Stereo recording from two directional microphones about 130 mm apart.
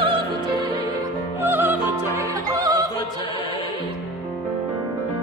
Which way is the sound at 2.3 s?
25° right (ahead or behind).